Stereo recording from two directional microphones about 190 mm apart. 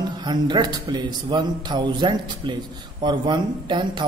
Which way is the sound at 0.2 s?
25° right (ahead or behind).